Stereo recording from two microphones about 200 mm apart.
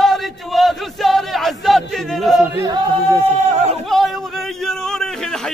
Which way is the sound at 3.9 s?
Centre (ahead or behind).